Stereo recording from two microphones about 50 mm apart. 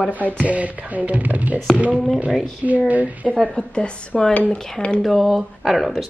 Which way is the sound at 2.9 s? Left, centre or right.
Right.